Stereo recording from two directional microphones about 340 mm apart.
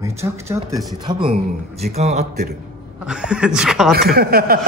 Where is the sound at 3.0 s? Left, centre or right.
Centre.